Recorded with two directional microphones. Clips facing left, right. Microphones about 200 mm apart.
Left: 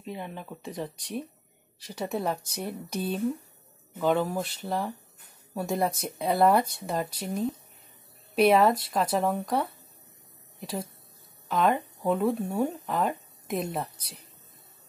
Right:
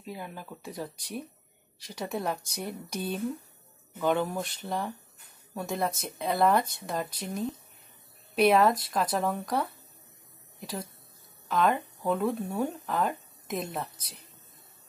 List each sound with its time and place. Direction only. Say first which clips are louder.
0.0 s speech: left 3 dB; 5° right (ahead or behind)
0.5 s speech: left 3 dB; 20° left (ahead or behind)
1.9 s speech: left 2 dB; 5° left (ahead or behind)